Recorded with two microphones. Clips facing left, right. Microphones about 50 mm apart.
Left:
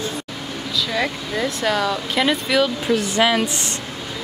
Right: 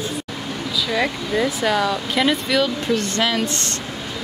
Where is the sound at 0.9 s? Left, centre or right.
Centre.